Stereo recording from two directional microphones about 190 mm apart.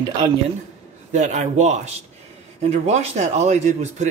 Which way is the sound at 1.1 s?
40° right (ahead or behind).